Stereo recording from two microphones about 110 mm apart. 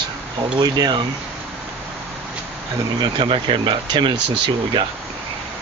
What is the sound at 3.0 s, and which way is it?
Speech, 50° right (ahead or behind).